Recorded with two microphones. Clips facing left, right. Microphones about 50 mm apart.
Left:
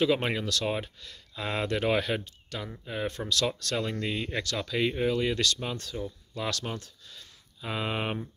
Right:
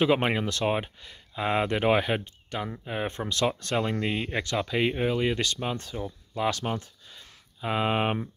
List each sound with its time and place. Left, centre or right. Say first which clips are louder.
0.0 s speech: right 3 dB; right